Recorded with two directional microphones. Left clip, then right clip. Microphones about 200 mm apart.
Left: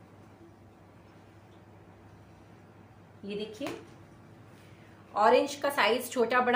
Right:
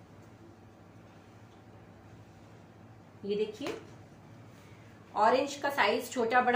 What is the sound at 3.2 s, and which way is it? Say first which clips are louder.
Speech: right 5 dB; 45° left (ahead or behind).